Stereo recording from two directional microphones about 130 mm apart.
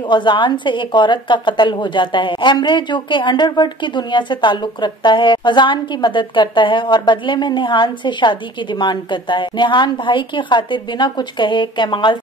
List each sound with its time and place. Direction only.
0.1 s a woman's voice: 35° left (ahead or behind)